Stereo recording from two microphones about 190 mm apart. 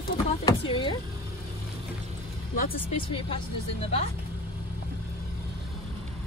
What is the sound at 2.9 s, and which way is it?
Speech, 30° left (ahead or behind).